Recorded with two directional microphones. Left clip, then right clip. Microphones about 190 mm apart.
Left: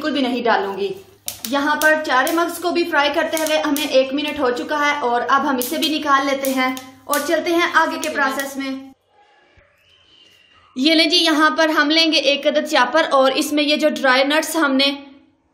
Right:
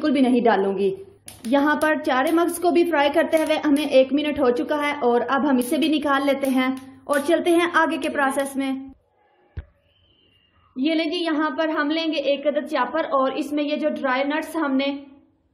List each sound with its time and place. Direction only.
0.0 s a woman's voice: 45° right (ahead or behind)
10.8 s a woman's voice: 20° left (ahead or behind)